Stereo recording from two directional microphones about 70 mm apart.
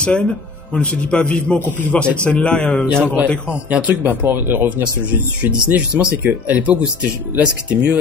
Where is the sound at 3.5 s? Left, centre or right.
Centre.